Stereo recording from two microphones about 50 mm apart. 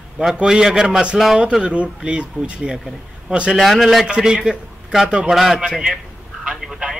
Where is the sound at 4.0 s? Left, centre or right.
Centre.